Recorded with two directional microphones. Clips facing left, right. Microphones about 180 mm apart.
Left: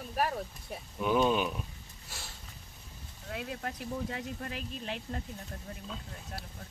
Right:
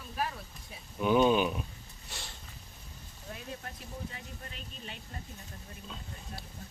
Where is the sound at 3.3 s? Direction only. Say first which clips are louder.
Left 5 dB; 65° left (ahead or behind).